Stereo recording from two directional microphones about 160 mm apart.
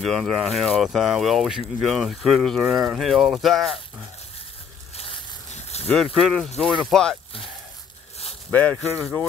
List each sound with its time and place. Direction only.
0.0 s speech: centre (ahead or behind)
4.9 s a sound: 40° left (ahead or behind)
6.1 s speech: centre (ahead or behind)
8.5 s speech: 10° left (ahead or behind)